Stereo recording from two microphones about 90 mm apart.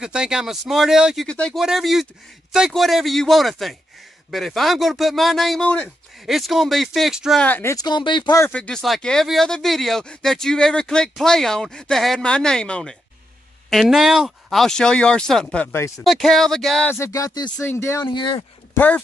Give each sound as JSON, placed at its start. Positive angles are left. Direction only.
{"t": 0.0, "sound": "speech", "side_deg": -10}
{"t": 1.2, "sound": "speech", "side_deg": 10}
{"t": 1.6, "sound": "speech", "side_deg": -5}
{"t": 5.6, "sound": "speech", "side_deg": 15}
{"t": 6.2, "sound": "speech", "side_deg": 0}
{"t": 7.3, "sound": "speech", "side_deg": 20}
{"t": 7.7, "sound": "speech", "side_deg": 50}
{"t": 8.5, "sound": "speech", "side_deg": 10}
{"t": 13.7, "sound": "speech", "side_deg": 0}
{"t": 16.9, "sound": "speech", "side_deg": 35}
{"t": 17.6, "sound": "speech", "side_deg": 25}
{"t": 18.0, "sound": "speech", "side_deg": 60}
{"t": 18.8, "sound": "speech", "side_deg": 20}